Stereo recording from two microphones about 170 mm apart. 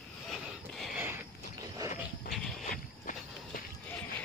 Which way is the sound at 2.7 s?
50° left (ahead or behind).